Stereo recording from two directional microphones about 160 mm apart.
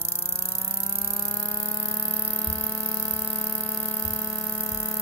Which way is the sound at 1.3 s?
15° left (ahead or behind).